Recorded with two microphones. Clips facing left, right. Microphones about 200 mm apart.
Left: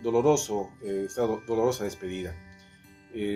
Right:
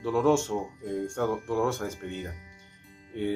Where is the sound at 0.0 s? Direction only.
15° left (ahead or behind).